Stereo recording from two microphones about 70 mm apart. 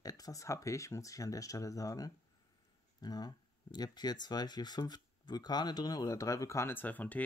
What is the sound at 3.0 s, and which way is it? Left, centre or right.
Speech, left.